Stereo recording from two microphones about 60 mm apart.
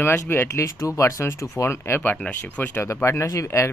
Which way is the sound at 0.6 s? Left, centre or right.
Left.